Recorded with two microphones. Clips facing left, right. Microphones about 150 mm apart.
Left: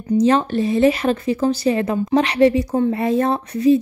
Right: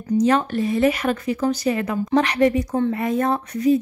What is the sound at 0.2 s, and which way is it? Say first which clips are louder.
Speech: left 3 dB; 25° left (ahead or behind).